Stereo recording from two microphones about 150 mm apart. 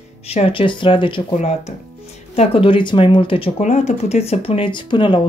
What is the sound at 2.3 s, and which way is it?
Speech, 40° left (ahead or behind).